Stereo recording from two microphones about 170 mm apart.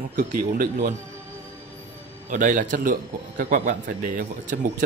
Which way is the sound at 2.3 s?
50° right (ahead or behind).